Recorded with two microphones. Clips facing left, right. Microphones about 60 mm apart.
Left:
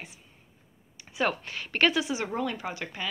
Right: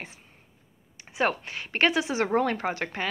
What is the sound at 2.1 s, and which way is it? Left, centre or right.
Speech, right.